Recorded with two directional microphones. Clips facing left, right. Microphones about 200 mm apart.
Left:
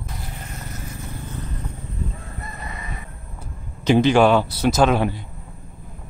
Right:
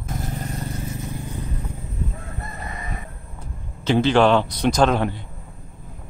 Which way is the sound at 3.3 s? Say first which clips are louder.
Left 2 dB; 15° left (ahead or behind).